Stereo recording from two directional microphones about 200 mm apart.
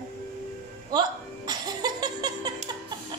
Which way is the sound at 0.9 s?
20° right (ahead or behind).